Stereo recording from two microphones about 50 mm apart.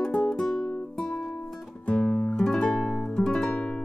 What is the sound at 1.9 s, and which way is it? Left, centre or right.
Music, left.